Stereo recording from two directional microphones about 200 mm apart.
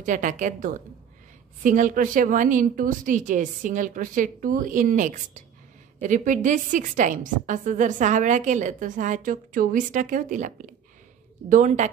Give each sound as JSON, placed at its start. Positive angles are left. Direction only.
{"t": 0.0, "sound": "a woman's voice", "side_deg": -40}